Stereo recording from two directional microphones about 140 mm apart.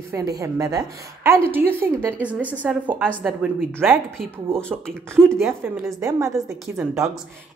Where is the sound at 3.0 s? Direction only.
5° left (ahead or behind).